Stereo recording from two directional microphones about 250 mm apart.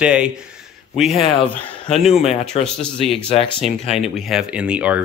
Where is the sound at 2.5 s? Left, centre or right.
Left.